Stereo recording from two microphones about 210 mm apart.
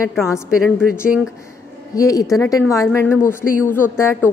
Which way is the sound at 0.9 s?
5° right (ahead or behind).